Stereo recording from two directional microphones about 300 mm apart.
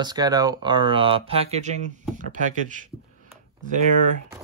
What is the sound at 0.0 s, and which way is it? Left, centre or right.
Speech, centre.